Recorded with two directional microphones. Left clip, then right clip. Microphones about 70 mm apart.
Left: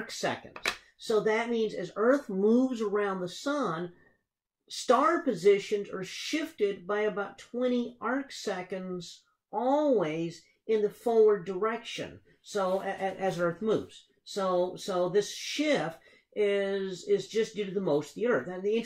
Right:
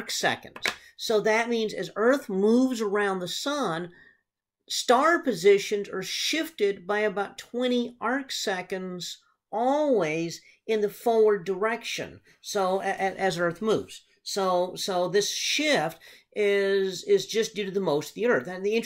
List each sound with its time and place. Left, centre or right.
0.0 s speech: centre